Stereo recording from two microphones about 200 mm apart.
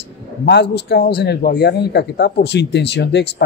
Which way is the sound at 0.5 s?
55° left (ahead or behind).